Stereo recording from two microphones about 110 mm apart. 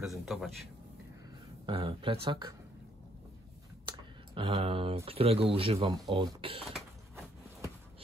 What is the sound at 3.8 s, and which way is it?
Clicking, 55° right (ahead or behind).